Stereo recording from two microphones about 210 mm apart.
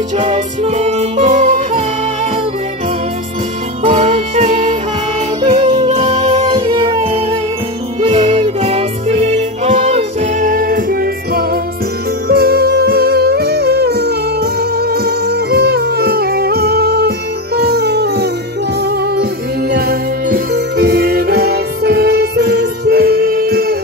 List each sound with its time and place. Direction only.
0.2 s music: 30° right (ahead or behind)
3.8 s music: 30° right (ahead or behind)
5.4 s yodeling: 25° right (ahead or behind)
5.9 s music: 30° right (ahead or behind)
6.5 s music: 20° right (ahead or behind)
8.0 s music: 30° right (ahead or behind); by 18.3 s 50° right (ahead or behind)
19.7 s music: 50° right (ahead or behind)